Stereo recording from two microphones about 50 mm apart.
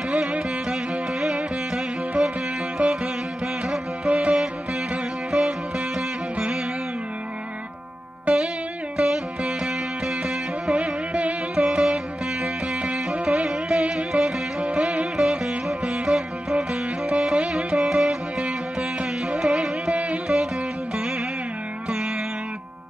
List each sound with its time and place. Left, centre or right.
0.1 s music: right
2.8 s music: right
3.6 s music: centre
4.1 s music: right
8.3 s music: right
8.9 s music: centre
11.8 s music: centre
13.2 s music: right
13.5 s music: centre